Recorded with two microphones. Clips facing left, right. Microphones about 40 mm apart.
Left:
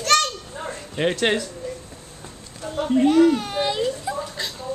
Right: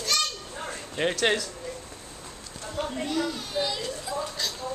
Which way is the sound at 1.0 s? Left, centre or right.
Centre.